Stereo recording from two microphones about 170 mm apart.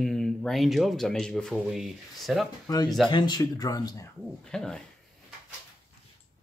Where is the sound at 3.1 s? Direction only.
25° left (ahead or behind).